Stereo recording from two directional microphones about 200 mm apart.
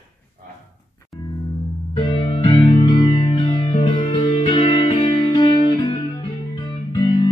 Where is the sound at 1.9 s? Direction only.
25° left (ahead or behind).